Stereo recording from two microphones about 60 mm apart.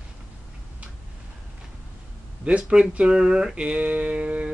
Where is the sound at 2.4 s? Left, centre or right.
Right.